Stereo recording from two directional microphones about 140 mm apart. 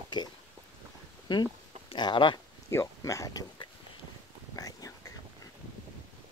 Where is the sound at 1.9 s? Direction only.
35° left (ahead or behind).